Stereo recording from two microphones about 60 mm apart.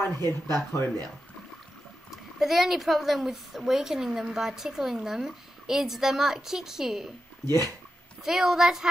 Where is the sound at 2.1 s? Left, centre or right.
Centre.